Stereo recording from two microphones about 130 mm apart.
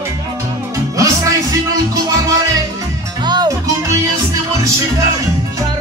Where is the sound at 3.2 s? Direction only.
35° right (ahead or behind).